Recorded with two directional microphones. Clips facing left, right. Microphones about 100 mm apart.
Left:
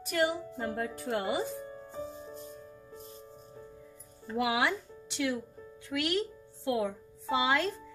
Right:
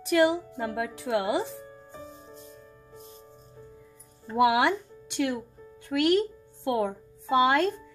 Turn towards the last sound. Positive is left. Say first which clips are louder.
# right 6 dB
turn(degrees=-55)  # may be behind; listen again after turning